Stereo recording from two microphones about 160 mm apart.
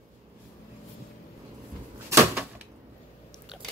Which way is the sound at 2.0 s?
15° right (ahead or behind).